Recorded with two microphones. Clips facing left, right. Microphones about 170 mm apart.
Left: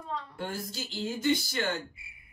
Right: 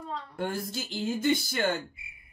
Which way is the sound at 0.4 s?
50° right (ahead or behind).